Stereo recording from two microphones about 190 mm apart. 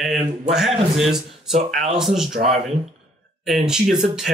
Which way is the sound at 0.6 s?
Centre (ahead or behind).